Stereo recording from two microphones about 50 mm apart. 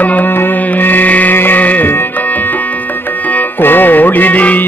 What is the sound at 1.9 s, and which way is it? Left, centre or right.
Tabla, left.